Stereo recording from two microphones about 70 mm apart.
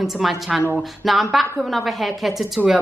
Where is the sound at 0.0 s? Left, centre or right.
Centre.